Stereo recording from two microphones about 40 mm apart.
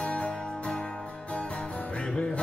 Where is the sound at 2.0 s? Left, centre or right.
Centre.